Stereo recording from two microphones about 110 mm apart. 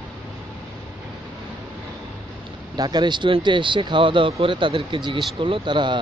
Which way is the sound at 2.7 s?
40° right (ahead or behind).